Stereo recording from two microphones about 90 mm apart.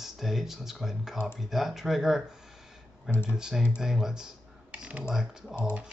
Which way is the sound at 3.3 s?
5° right (ahead or behind).